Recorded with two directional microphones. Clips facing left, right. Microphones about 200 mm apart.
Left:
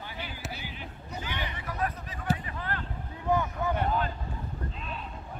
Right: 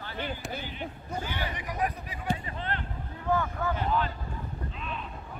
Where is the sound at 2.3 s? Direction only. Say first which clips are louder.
Right 1 dB; 25° right (ahead or behind).